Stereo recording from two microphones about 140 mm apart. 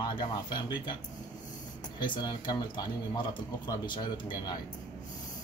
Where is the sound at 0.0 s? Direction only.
35° left (ahead or behind).